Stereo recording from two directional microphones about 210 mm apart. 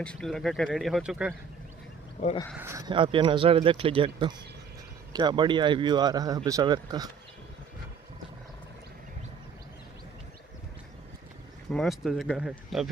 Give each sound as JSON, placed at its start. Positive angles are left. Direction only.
{"t": 0.0, "sound": "speech", "side_deg": 5}
{"t": 2.2, "sound": "speech", "side_deg": 25}
{"t": 2.5, "sound": "speech", "side_deg": -15}
{"t": 11.7, "sound": "speech", "side_deg": 0}